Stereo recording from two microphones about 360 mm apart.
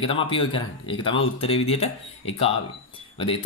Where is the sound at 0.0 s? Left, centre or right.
Centre.